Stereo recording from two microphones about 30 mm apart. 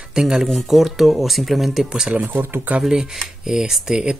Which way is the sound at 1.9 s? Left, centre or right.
Right.